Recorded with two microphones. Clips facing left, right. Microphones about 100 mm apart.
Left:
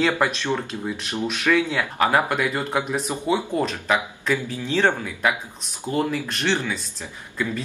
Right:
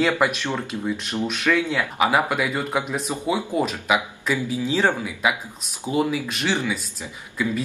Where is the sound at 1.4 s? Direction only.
15° left (ahead or behind).